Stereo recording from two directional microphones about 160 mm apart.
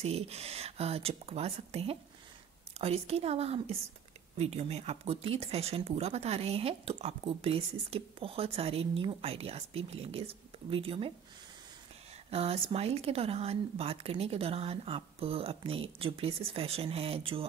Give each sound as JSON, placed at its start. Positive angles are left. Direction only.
{"t": 0.0, "sound": "speech", "side_deg": -40}
{"t": 12.3, "sound": "speech", "side_deg": -40}